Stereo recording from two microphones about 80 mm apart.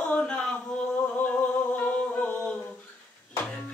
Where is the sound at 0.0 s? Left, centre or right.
Centre.